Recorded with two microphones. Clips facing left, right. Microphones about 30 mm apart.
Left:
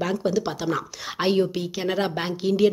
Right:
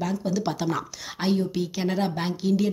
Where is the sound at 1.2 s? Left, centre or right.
Left.